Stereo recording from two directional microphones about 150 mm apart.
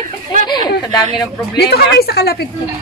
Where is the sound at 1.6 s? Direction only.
90° left.